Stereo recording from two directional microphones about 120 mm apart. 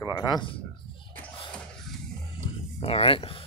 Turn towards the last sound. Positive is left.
turn(degrees=50)  # may be behind; listen again after turning